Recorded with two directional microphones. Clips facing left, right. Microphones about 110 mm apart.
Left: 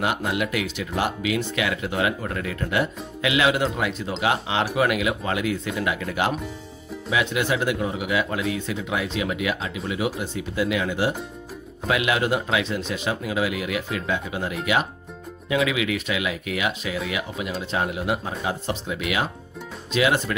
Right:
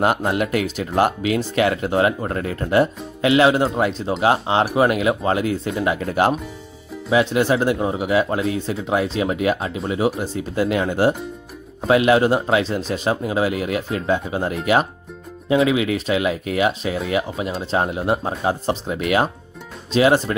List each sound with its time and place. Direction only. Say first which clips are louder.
0.0 s speech: right 5 dB; 40° right (ahead or behind)